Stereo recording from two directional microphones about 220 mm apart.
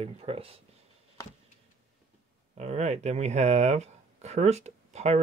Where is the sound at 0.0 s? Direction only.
25° right (ahead or behind).